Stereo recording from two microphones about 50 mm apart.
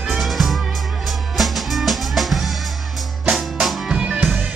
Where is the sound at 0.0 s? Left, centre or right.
Centre.